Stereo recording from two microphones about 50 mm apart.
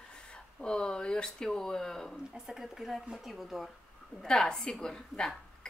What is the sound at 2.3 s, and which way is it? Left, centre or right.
A woman's voice, centre.